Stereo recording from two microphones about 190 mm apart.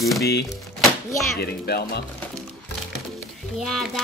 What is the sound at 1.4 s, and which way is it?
Speech, 55° left (ahead or behind).